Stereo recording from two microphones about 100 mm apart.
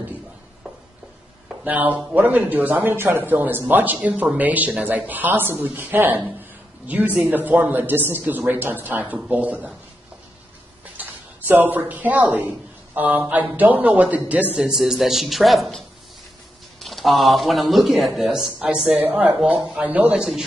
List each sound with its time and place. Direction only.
1.6 s speech: 15° right (ahead or behind)
11.0 s speech: 20° right (ahead or behind)
14.5 s speech: 5° right (ahead or behind)
16.8 s speech: centre (ahead or behind)